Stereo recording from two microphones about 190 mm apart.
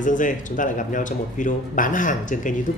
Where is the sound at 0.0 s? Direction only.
45° left (ahead or behind).